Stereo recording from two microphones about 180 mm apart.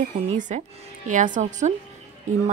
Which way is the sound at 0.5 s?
35° right (ahead or behind).